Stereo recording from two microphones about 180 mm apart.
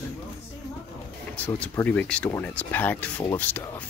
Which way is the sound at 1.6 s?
10° left (ahead or behind).